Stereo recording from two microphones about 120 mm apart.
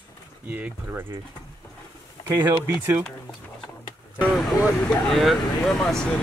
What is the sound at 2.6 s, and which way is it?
Speech, 20° right (ahead or behind).